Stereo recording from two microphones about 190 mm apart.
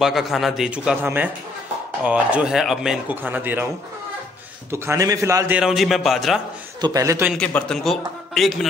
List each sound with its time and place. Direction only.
0.0 s speech: centre (ahead or behind)
4.6 s a man's voice: 15° right (ahead or behind)
5.6 s speech: centre (ahead or behind)
6.8 s a man's voice: 20° right (ahead or behind)
7.3 s speech: 5° left (ahead or behind)